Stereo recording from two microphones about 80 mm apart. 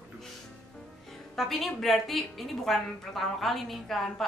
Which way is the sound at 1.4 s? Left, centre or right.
Centre.